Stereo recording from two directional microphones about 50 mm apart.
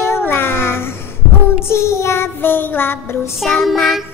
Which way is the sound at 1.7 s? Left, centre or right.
Left.